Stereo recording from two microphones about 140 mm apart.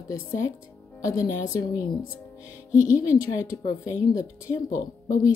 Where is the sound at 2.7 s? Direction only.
65° left (ahead or behind).